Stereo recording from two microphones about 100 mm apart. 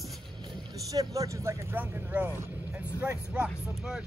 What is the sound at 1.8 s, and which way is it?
Speech, 15° right (ahead or behind).